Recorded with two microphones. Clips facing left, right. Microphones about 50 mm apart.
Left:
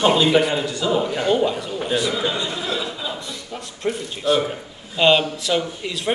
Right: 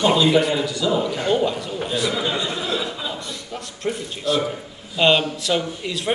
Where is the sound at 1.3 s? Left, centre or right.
Centre.